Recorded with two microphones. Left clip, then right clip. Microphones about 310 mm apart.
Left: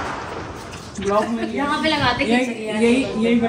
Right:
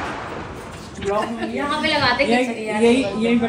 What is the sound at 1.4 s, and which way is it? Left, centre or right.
A woman's voice, centre.